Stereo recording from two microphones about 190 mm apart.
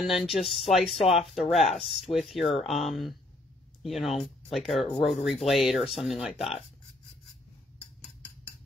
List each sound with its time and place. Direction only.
0.0 s speech: centre (ahead or behind)
0.8 s speech: 30° left (ahead or behind)
1.1 s speech: centre (ahead or behind)